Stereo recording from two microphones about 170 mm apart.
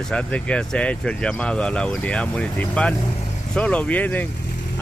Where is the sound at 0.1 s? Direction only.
5° left (ahead or behind).